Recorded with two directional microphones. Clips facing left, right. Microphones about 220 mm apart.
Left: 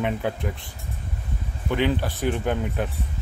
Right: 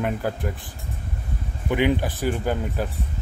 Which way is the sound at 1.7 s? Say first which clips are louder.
Right 2 dB; 15° right (ahead or behind).